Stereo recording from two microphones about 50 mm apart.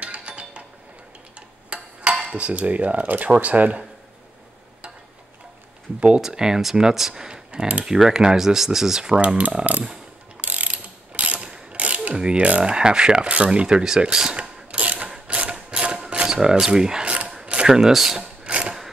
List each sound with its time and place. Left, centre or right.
0.0 s music: right
1.7 s a sound: right
2.3 s speech: right
5.9 s speech: right
6.2 s speech: centre
7.8 s speech: centre
10.4 s mechanisms: right
15.0 s a sound: right
17.6 s speech: centre
18.2 s sewing machine: right